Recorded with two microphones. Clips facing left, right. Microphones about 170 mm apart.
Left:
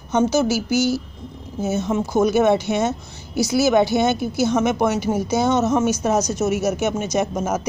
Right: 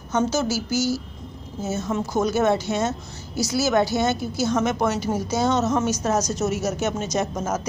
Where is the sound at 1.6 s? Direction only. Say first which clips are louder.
Left 4 dB; 15° left (ahead or behind).